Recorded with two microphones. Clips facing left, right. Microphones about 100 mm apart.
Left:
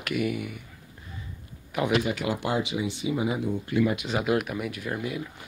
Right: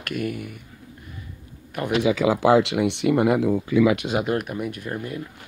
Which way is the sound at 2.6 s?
80° right.